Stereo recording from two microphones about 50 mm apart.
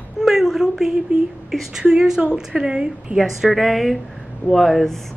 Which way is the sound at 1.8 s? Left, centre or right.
Centre.